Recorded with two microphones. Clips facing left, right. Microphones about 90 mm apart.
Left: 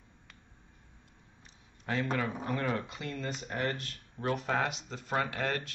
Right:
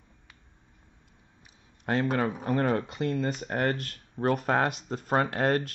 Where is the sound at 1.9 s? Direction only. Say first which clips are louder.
Right 6 dB; 40° right (ahead or behind).